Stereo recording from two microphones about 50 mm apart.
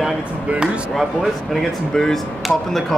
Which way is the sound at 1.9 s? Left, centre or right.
Centre.